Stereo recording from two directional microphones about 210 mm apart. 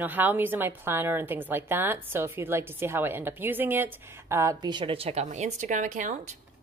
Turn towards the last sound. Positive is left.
turn(degrees=-35)  # may be behind; listen again after turning